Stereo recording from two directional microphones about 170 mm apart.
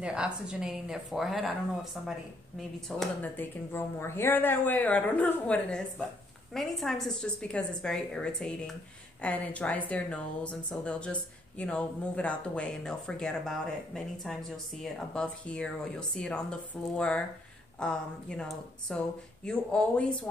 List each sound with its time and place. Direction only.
0.0 s speech: 5° right (ahead or behind)
3.0 s speech: 10° left (ahead or behind)